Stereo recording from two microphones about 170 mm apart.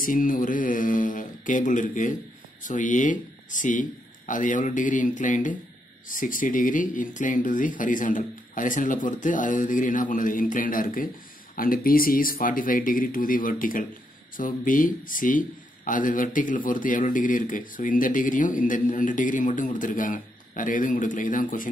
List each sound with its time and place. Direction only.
0.0 s speech: 55° left (ahead or behind)